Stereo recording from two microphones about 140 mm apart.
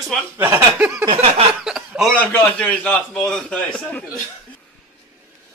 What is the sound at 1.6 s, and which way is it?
Chuckle, 5° right (ahead or behind).